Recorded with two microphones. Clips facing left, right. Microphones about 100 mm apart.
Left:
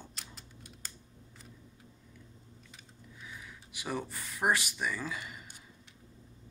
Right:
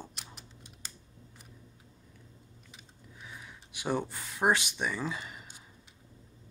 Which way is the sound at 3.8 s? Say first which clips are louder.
Right 5 dB; 30° right (ahead or behind).